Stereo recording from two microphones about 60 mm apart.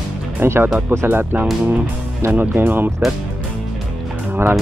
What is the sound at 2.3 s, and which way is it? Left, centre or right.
Speech, right.